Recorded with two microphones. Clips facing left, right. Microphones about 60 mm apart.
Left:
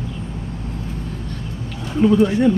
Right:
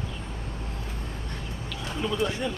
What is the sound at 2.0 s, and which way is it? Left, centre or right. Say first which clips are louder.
Speech: left 13 dB; left.